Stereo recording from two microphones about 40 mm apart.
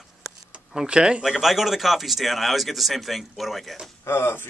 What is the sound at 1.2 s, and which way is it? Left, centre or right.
Speech, centre.